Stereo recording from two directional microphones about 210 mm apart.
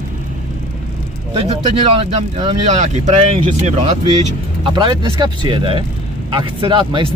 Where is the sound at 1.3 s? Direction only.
25° right (ahead or behind).